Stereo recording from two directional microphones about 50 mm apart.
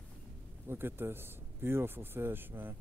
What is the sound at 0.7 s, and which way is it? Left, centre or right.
Speech, right.